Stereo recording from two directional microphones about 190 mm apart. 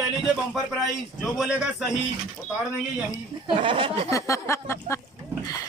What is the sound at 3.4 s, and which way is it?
Speech, 25° right (ahead or behind).